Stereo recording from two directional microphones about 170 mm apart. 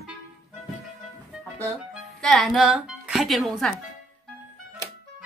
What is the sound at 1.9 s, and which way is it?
Speech, centre (ahead or behind).